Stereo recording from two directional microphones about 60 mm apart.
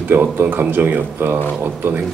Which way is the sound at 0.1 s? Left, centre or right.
Right.